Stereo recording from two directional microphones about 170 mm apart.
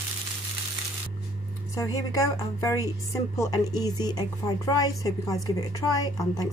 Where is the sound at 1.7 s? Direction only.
20° left (ahead or behind).